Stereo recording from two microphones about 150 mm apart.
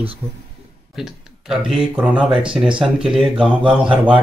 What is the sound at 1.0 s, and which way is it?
Speech, 5° right (ahead or behind).